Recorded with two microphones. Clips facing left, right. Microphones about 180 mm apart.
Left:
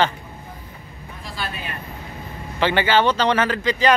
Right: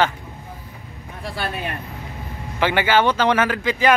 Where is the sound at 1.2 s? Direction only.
60° right (ahead or behind).